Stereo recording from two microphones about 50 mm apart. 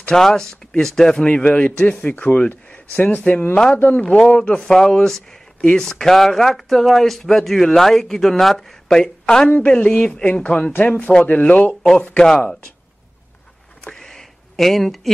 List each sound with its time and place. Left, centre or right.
0.1 s speech: centre
1.2 s a man's voice: left
4.0 s a man's voice: centre
9.5 s a man's voice: left
12.2 s speech: centre
13.9 s a sound: centre